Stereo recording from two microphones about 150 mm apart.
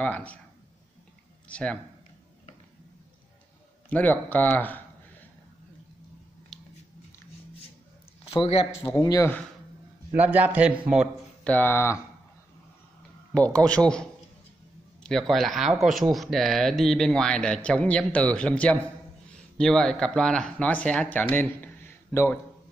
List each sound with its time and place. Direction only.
0.0 s speech: 10° left (ahead or behind)
1.5 s speech: 10° left (ahead or behind)
3.9 s speech: 10° left (ahead or behind)
6.5 s a sound: 5° left (ahead or behind)
8.3 s a man's voice: 40° left (ahead or behind)
8.9 s speech: 20° left (ahead or behind)
10.1 s a man's voice: 10° right (ahead or behind)
11.4 s speech: 10° left (ahead or behind)
13.3 s speech: 10° left (ahead or behind)
15.0 s speech: centre (ahead or behind)